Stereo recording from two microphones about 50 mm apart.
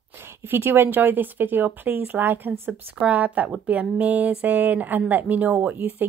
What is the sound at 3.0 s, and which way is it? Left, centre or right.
Speech, right.